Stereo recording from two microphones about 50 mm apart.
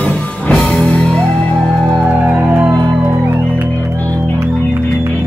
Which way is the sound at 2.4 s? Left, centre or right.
Centre.